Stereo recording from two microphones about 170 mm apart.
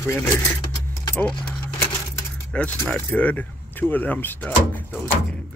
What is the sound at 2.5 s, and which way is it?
Speech, 10° left (ahead or behind).